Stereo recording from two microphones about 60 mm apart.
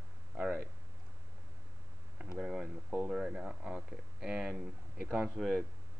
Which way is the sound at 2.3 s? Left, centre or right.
Centre.